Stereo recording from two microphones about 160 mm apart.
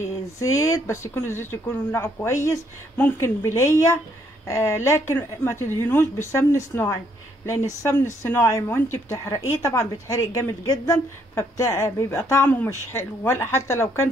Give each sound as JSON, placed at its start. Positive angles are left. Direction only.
{"t": 0.4, "sound": "a woman's voice", "side_deg": 20}